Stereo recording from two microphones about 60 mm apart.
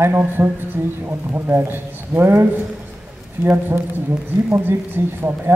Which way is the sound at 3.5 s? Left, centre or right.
Right.